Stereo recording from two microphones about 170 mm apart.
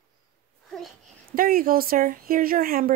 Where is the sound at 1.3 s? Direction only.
55° right (ahead or behind).